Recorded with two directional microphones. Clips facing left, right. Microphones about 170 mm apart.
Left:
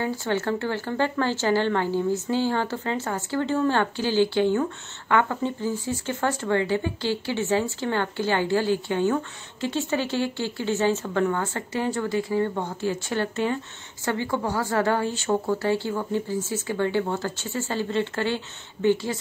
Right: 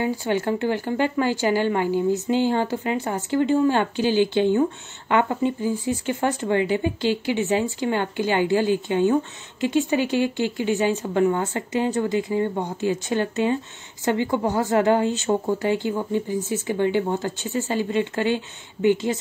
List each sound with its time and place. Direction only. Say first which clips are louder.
0.0 s speech: right 3 dB; 15° right (ahead or behind)